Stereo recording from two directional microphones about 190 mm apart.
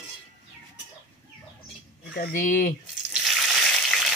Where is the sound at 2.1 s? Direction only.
50° left (ahead or behind).